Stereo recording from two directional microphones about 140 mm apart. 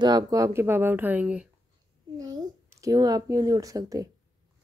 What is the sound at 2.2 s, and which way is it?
A child's voice, 25° right (ahead or behind).